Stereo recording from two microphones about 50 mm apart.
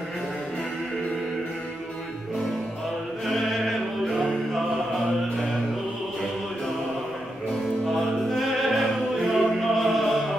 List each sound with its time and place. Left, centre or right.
3.3 s music: centre
7.9 s music: centre